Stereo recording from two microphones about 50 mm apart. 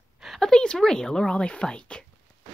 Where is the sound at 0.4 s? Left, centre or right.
Centre.